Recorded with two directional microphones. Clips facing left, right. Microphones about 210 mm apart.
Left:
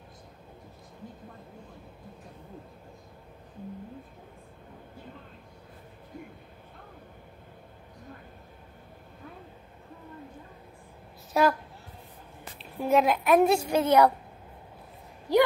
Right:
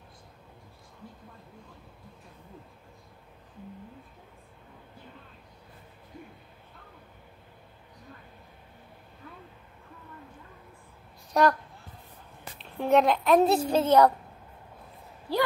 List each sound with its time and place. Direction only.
11.3 s a woman's voice: 5° left (ahead or behind)
12.5 s a woman's voice: 5° left (ahead or behind)
15.3 s a sound: 15° left (ahead or behind)